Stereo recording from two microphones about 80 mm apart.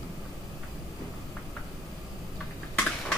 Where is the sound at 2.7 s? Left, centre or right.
Centre.